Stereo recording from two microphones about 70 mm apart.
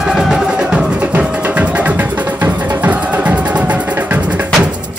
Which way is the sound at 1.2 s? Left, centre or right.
Centre.